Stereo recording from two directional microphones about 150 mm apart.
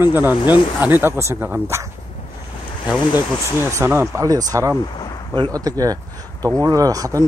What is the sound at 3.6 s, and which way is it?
Speech, 15° right (ahead or behind).